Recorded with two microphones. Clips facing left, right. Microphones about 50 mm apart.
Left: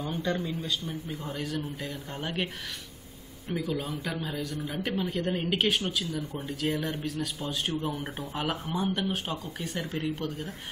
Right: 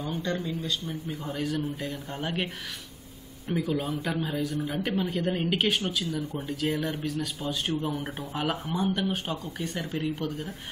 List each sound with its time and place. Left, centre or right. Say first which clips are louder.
0.0 s a man's voice: even; centre